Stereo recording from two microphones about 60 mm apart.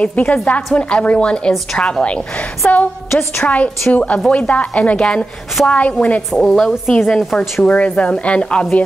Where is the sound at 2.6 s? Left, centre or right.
Left.